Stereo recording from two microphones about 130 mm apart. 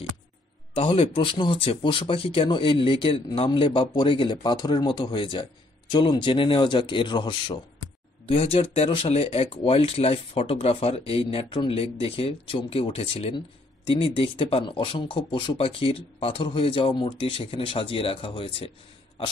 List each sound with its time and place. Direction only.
0.7 s speech: 45° left (ahead or behind)
8.3 s speech: 50° left (ahead or behind)